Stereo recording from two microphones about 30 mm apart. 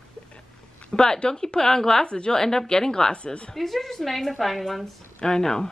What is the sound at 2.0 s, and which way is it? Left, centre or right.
Speech, left.